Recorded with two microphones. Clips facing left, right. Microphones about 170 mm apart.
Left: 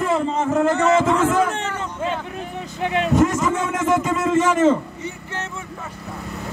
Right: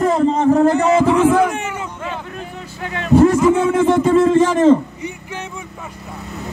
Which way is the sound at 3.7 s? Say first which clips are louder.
Right 7 dB; 30° right (ahead or behind).